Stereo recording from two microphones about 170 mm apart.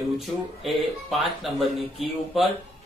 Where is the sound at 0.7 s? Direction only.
Centre (ahead or behind).